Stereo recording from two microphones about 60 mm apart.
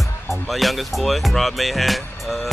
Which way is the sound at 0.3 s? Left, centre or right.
Centre.